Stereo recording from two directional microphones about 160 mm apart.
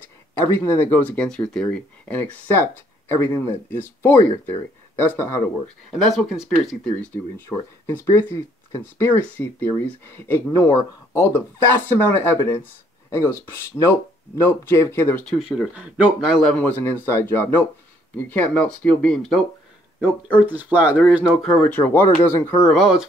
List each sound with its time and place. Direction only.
0.3 s speech: 15° left (ahead or behind)
3.7 s speech: 15° left (ahead or behind)
6.1 s speech: centre (ahead or behind)
7.4 s speech: 15° left (ahead or behind)
15.3 s speech: centre (ahead or behind)
16.4 s speech: 10° left (ahead or behind)
20.0 s speech: 10° right (ahead or behind); by 22.7 s 15° left (ahead or behind)
22.7 s speech: centre (ahead or behind)